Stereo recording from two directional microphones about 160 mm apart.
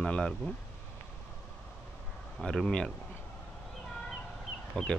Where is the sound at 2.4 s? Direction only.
5° left (ahead or behind).